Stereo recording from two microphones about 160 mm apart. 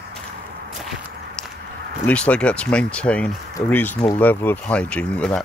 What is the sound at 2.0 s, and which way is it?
Speech, 10° left (ahead or behind).